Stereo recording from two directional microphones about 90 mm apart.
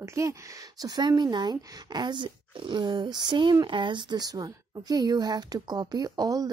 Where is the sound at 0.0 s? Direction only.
35° right (ahead or behind).